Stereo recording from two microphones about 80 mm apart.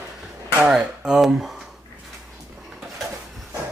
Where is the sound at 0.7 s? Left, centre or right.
Centre.